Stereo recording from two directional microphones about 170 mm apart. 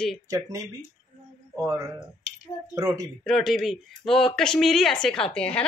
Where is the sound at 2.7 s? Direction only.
20° right (ahead or behind).